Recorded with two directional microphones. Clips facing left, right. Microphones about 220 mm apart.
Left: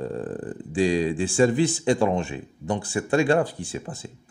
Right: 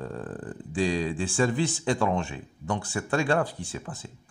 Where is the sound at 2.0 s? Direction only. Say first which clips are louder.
Left 4 dB; 30° left (ahead or behind).